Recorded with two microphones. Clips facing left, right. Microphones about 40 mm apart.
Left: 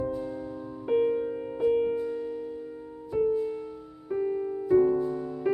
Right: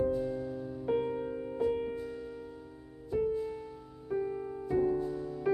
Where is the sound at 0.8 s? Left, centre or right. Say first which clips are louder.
Left 7 dB; centre.